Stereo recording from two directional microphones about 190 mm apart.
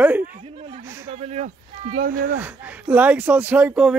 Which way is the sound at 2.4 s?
10° right (ahead or behind).